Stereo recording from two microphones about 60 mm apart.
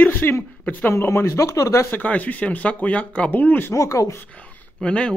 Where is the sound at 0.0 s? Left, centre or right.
Left.